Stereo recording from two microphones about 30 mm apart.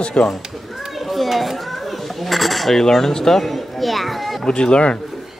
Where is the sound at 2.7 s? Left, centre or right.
Centre.